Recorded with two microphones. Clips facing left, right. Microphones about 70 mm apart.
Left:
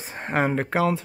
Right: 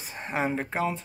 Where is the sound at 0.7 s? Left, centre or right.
Left.